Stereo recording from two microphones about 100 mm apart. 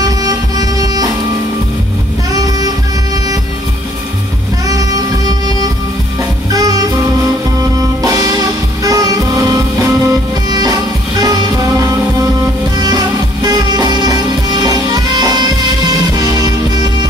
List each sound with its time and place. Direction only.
0.2 s music: 40° right (ahead or behind)
4.6 s music: 40° right (ahead or behind)
8.0 s music: 35° right (ahead or behind)